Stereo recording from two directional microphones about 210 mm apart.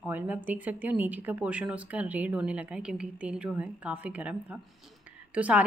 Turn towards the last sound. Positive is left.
turn(degrees=-5)  # may be behind; listen again after turning